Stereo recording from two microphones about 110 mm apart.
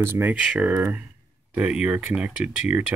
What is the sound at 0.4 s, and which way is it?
Speech, 10° right (ahead or behind).